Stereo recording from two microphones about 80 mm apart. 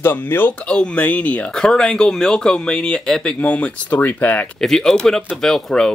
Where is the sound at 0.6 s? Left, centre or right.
Centre.